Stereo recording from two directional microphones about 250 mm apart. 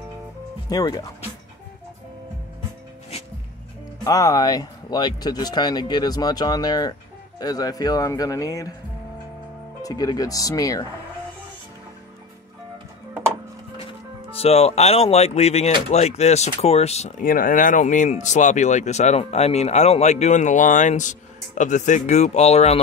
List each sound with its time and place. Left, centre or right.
0.7 s speech: centre
4.0 s speech: centre
9.8 s speech: centre
14.3 s speech: left